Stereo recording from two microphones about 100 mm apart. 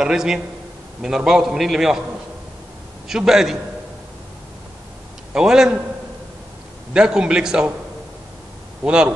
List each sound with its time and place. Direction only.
0.0 s a man's voice: 5° right (ahead or behind)
3.1 s a man's voice: 5° right (ahead or behind)
5.3 s a man's voice: 5° right (ahead or behind)
6.9 s a man's voice: 10° right (ahead or behind)
8.8 s a man's voice: 10° right (ahead or behind)